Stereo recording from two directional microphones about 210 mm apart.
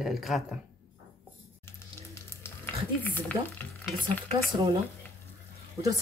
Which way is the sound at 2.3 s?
10° left (ahead or behind).